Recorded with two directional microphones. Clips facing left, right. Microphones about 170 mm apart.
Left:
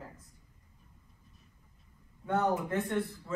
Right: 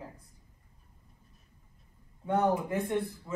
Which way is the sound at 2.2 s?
15° right (ahead or behind).